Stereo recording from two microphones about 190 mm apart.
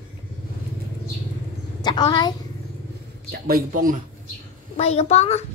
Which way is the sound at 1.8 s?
20° left (ahead or behind).